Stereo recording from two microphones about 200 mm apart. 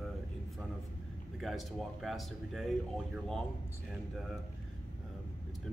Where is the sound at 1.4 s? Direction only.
Centre (ahead or behind).